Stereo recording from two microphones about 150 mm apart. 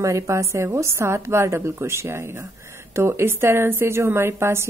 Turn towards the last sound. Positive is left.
turn(degrees=-15)  # may be behind; listen again after turning